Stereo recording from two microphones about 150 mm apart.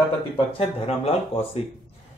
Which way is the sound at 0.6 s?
40° left (ahead or behind).